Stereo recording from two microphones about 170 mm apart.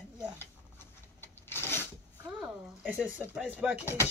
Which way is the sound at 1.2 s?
15° left (ahead or behind).